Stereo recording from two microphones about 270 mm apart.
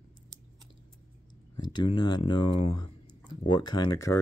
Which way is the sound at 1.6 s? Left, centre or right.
Centre.